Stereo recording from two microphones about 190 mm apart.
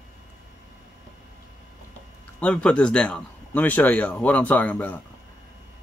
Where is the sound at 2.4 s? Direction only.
5° left (ahead or behind).